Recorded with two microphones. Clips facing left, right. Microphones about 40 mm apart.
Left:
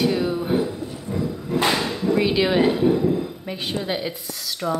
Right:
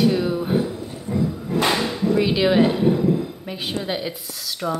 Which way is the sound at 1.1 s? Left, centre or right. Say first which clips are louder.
Right 4 dB; right.